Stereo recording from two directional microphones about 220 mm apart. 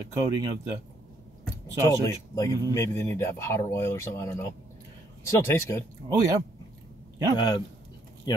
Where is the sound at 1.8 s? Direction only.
15° left (ahead or behind).